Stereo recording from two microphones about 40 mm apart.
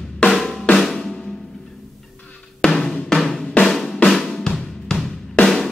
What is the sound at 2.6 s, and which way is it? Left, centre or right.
Drum, centre.